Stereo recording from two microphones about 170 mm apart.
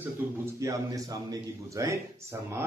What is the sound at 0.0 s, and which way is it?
A man's voice, 15° right (ahead or behind).